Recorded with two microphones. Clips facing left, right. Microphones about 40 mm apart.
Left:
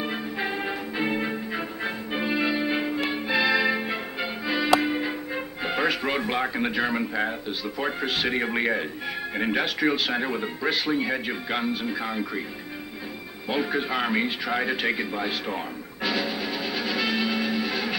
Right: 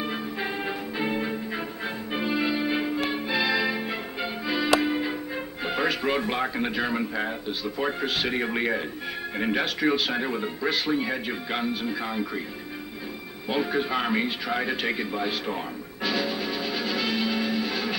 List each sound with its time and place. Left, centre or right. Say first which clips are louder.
0.0 s music: left 1 dB; centre
9.4 s speech: left 1 dB; centre
13.5 s a sound: even; centre